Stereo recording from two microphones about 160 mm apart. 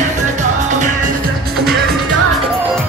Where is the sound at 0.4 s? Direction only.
50° right (ahead or behind).